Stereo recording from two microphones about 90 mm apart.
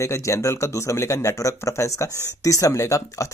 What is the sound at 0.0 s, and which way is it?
Speech, 35° left (ahead or behind).